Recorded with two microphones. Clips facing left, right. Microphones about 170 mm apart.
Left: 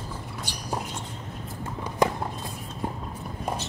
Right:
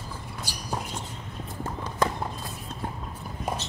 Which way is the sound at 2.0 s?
15° left (ahead or behind).